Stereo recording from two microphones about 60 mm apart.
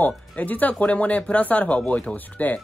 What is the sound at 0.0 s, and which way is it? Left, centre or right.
Speech, left.